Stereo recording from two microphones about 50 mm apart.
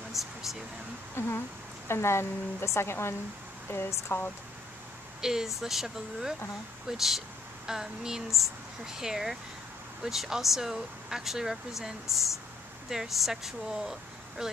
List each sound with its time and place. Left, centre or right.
0.1 s a sound: centre
1.2 s speech: left
5.2 s speech: centre